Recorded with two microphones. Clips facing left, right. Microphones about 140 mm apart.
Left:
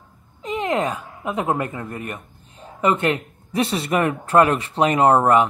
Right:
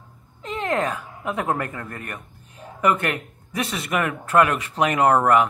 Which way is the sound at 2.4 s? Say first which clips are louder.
Left 1 dB; 25° left (ahead or behind).